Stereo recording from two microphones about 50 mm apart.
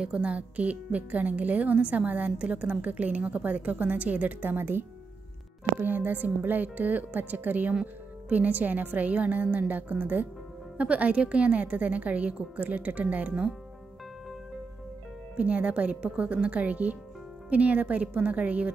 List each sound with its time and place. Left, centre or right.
0.0 s a woman's voice: right
15.3 s a woman's voice: right